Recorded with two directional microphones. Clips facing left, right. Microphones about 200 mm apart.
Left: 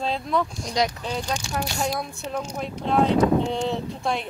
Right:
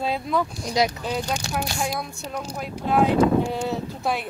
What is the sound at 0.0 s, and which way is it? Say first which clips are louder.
Speech: right 1 dB; 5° right (ahead or behind).